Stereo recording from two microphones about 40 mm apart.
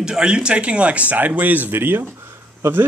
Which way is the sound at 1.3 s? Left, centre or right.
Right.